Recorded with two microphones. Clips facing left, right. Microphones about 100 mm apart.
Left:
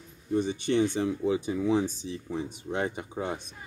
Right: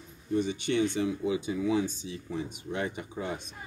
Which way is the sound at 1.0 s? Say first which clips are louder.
Left 2 dB; 35° left (ahead or behind).